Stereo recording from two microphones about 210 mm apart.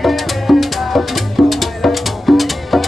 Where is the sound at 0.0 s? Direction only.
Centre (ahead or behind).